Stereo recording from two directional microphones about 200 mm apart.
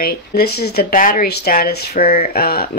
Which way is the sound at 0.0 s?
50° left (ahead or behind).